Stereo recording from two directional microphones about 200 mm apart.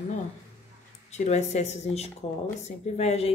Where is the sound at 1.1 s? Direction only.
35° left (ahead or behind).